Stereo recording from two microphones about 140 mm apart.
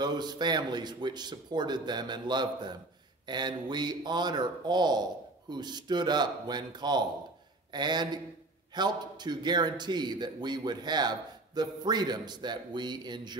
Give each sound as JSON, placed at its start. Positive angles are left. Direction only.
{"t": 0.0, "sound": "a man's voice", "side_deg": -30}